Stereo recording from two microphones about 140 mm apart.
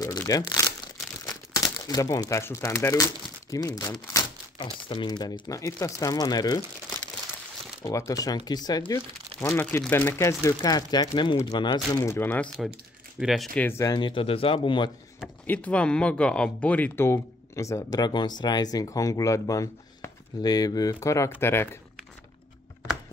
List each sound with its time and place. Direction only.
0.3 s speech: 25° left (ahead or behind)
1.2 s crumpling: 25° left (ahead or behind)
4.6 s speech: 35° left (ahead or behind)
7.8 s speech: 25° left (ahead or behind)
9.4 s speech: 15° left (ahead or behind)
12.3 s speech: 10° left (ahead or behind)
13.2 s speech: 5° right (ahead or behind)
13.6 s speech: 20° left (ahead or behind); by 14.9 s 35° left (ahead or behind)
15.4 s speech: 10° left (ahead or behind)